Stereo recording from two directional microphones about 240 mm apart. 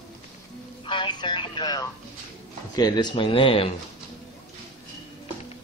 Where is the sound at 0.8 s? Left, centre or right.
Centre.